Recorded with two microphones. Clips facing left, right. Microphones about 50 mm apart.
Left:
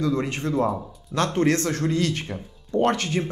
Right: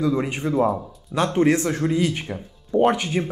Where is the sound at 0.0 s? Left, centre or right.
Centre.